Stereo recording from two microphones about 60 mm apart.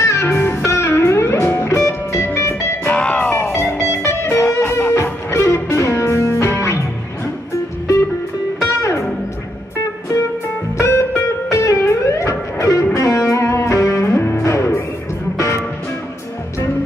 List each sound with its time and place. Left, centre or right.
0.0 s music: left
2.9 s music: centre
3.7 s music: left
4.4 s music: centre
4.6 s music: left
5.3 s music: left
8.5 s music: left
10.8 s music: left